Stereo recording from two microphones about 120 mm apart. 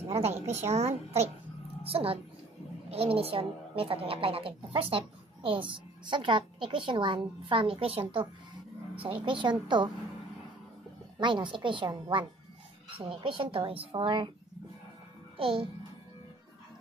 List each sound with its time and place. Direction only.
0.0 s a woman's voice: 60° right (ahead or behind)
1.8 s a woman's voice: 50° right (ahead or behind)
11.1 s a woman's voice: 40° right (ahead or behind)
15.3 s a child's voice: 45° right (ahead or behind)